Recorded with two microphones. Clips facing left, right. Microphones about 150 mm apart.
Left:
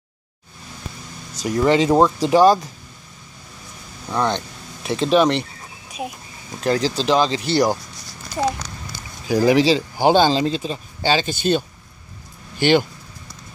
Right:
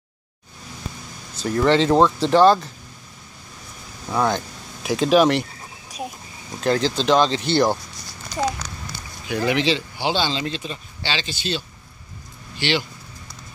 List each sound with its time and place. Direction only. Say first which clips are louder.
1.3 s speech: left 1 dB; 10° left (ahead or behind)
4.1 s speech: even; 5° right (ahead or behind)
4.8 s a sound: even; centre (ahead or behind)
6.6 s speech: even; 5° left (ahead or behind)
9.3 s speech: left 6 dB; 35° left (ahead or behind)
10.4 s speech: left 6 dB; 35° left (ahead or behind)